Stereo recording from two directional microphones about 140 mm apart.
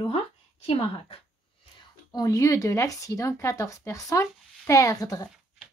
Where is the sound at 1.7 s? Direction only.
25° left (ahead or behind).